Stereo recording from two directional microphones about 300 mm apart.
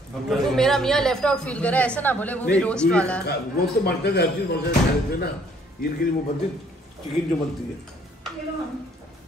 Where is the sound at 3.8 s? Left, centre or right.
Left.